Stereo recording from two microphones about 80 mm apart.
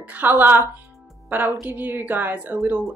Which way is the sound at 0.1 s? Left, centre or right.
Right.